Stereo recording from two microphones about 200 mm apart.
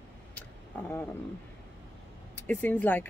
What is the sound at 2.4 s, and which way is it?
Speech, 10° left (ahead or behind).